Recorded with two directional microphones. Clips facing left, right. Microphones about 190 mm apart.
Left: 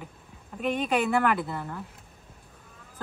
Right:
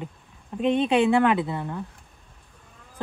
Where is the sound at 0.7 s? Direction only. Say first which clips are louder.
Right 6 dB; 25° right (ahead or behind).